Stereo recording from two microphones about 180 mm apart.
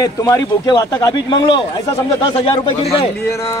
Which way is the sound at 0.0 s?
20° left (ahead or behind).